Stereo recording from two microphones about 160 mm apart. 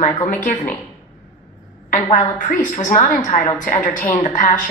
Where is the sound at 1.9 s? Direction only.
50° left (ahead or behind).